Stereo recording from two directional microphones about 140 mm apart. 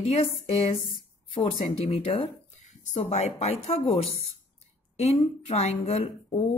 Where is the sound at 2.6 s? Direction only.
60° left (ahead or behind).